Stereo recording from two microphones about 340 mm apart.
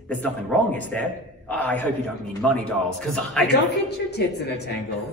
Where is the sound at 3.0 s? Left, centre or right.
Centre.